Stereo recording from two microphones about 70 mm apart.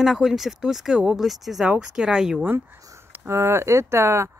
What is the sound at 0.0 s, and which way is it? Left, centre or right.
Speech, centre.